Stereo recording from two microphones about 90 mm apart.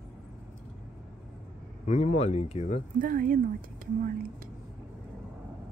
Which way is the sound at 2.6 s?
90° left.